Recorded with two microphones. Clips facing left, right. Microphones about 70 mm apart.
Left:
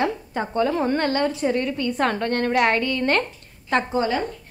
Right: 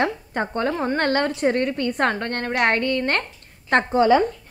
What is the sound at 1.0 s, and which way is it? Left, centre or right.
A woman's voice, right.